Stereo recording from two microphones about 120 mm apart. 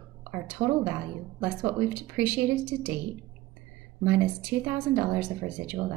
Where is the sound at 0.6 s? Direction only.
20° right (ahead or behind).